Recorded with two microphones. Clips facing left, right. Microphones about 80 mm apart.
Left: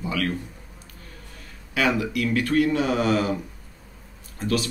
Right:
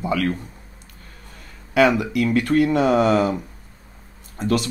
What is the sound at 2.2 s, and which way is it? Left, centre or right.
Speech, right.